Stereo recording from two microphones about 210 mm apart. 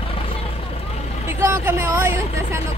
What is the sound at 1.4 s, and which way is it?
Speech, 15° right (ahead or behind).